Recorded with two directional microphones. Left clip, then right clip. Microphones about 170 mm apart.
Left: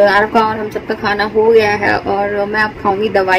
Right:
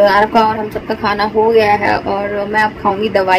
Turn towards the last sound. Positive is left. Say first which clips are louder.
# even
turn(degrees=0)  # may be behind; listen again after turning